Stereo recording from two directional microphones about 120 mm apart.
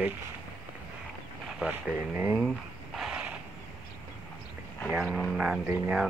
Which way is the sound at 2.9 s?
5° right (ahead or behind).